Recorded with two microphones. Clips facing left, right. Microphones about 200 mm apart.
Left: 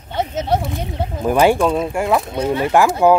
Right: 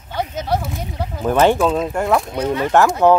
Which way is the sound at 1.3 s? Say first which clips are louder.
Even; 10° left (ahead or behind).